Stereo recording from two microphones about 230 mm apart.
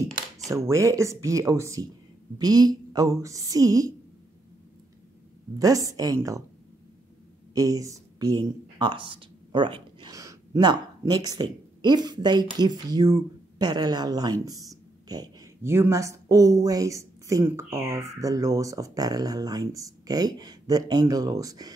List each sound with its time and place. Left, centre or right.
0.5 s a woman's voice: centre
5.6 s a woman's voice: centre
7.5 s speech: centre